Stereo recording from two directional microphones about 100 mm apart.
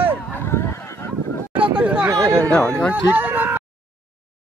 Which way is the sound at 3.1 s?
20° right (ahead or behind).